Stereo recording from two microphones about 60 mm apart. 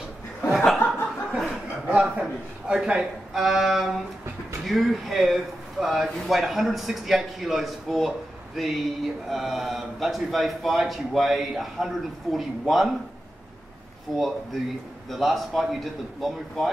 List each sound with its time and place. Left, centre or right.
1.3 s chuckle: right
2.7 s a man's voice: centre
14.1 s a man's voice: centre